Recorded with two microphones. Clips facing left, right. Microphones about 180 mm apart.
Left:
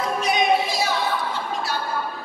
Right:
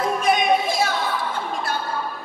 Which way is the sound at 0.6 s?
50° right (ahead or behind).